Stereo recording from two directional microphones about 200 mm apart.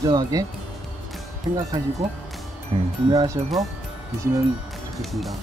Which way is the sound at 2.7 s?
25° right (ahead or behind).